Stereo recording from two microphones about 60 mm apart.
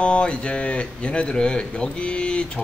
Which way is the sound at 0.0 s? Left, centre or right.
Centre.